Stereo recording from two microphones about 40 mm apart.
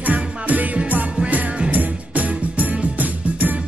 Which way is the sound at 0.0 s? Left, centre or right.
Right.